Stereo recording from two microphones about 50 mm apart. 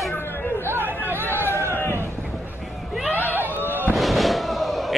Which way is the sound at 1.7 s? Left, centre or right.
Left.